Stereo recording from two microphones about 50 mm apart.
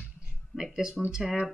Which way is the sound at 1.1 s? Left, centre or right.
Centre.